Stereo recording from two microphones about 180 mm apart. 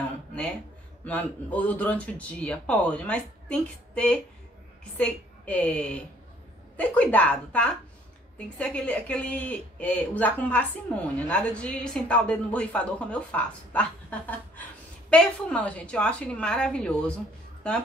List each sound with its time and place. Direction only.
1.0 s speech: 10° left (ahead or behind)
15.0 s a woman's voice: 5° left (ahead or behind)